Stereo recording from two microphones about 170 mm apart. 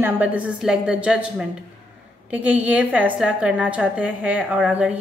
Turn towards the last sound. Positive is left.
turn(degrees=-5)  # may be behind; listen again after turning